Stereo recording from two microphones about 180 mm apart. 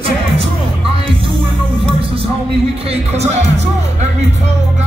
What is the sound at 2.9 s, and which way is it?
Music, 40° right (ahead or behind).